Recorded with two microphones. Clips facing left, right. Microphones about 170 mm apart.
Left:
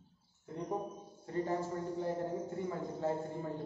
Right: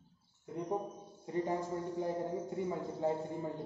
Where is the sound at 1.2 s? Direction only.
15° right (ahead or behind).